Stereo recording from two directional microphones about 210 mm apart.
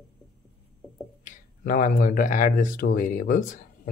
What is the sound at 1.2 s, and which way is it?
Speech, 40° left (ahead or behind).